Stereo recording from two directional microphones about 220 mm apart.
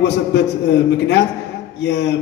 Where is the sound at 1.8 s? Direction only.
50° left (ahead or behind).